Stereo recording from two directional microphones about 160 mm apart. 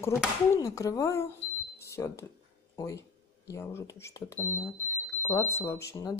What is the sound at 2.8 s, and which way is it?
Speech, 20° left (ahead or behind).